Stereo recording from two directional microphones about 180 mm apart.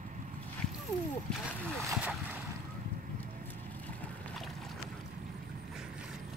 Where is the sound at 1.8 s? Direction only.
15° right (ahead or behind).